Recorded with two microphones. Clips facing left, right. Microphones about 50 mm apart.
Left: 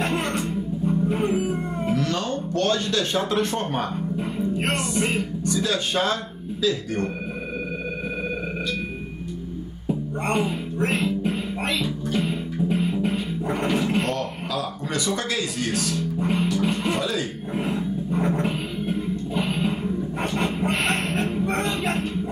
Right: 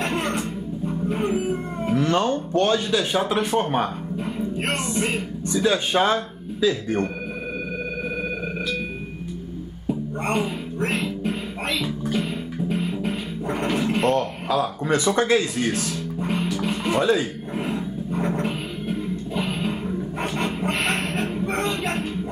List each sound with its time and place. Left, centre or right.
0.0 s music: centre
2.0 s speech: right
4.2 s music: centre
4.7 s speech: centre
5.4 s speech: right
9.8 s music: centre
14.1 s speech: right
15.8 s speech: centre
17.0 s speech: right
17.6 s music: centre
20.9 s speech: centre